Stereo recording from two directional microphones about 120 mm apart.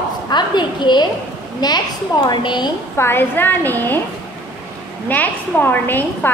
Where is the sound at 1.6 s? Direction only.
35° left (ahead or behind).